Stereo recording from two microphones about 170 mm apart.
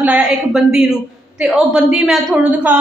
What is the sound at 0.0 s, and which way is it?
A woman's voice, 5° right (ahead or behind).